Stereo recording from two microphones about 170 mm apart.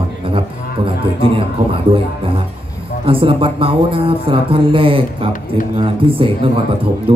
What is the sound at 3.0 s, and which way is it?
Speech, 30° right (ahead or behind).